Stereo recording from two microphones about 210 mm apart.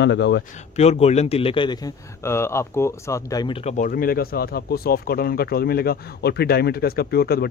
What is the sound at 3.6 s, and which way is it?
Speech, 40° left (ahead or behind).